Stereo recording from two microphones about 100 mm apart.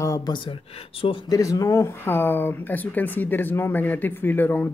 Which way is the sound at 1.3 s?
35° left (ahead or behind).